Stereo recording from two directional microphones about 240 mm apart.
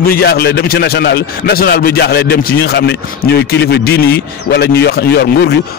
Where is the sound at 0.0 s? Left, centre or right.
Left.